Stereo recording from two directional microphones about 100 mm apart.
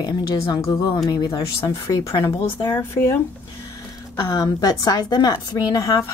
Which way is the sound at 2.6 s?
20° left (ahead or behind).